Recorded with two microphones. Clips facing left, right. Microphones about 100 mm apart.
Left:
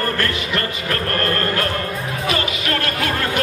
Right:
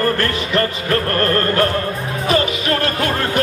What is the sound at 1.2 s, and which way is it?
Music, 35° right (ahead or behind).